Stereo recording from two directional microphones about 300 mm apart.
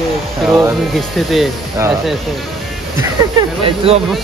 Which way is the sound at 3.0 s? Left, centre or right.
Centre.